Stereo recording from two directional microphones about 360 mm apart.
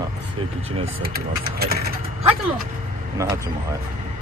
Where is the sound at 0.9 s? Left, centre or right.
Right.